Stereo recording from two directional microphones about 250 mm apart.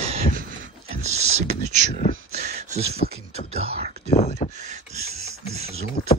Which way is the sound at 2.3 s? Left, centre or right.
Right.